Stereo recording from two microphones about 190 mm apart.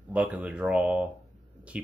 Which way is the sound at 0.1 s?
5° right (ahead or behind).